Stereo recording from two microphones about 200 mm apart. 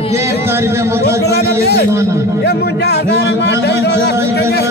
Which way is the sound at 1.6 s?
55° left (ahead or behind).